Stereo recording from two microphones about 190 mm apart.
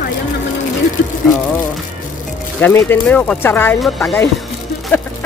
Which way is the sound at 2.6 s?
10° left (ahead or behind).